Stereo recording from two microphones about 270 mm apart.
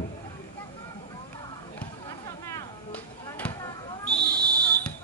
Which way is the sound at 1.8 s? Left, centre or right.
Centre.